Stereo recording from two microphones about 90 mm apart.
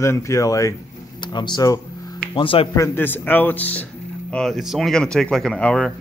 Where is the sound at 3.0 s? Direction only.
20° left (ahead or behind).